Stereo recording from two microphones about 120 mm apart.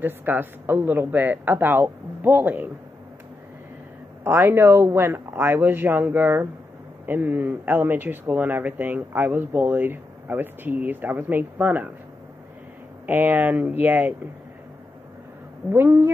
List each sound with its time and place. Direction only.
0.0 s speech: 15° right (ahead or behind)
4.2 s speech: 20° right (ahead or behind)
13.0 s speech: 15° right (ahead or behind)
15.7 s speech: 20° right (ahead or behind)